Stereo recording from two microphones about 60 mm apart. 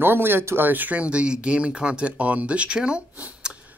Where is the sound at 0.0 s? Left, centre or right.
Right.